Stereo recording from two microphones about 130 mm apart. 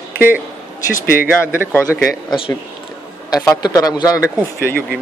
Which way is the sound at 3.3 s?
30° left (ahead or behind).